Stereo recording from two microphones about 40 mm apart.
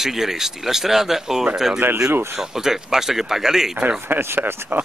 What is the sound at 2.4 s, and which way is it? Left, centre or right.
Speech, centre.